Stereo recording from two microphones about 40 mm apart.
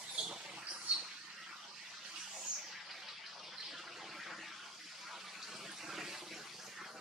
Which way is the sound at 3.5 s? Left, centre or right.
Centre.